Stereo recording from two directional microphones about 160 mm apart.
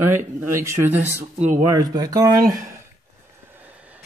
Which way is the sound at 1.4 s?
45° right (ahead or behind).